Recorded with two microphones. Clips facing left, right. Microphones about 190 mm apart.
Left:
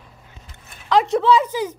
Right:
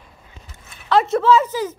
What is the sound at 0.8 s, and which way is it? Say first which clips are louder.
Speech: right 1 dB; 15° left (ahead or behind).